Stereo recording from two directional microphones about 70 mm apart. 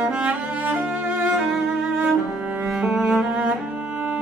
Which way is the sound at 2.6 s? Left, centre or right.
Centre.